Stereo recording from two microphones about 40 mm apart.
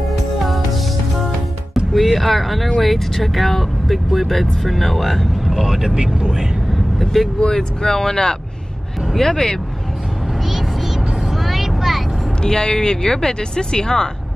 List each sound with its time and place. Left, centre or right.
2.0 s speech: centre
5.5 s speech: centre
6.7 s vehicle: centre
7.3 s speech: centre
11.4 s vehicle: centre
12.4 s speech: centre